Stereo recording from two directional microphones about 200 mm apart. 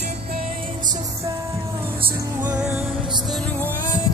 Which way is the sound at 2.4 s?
5° right (ahead or behind).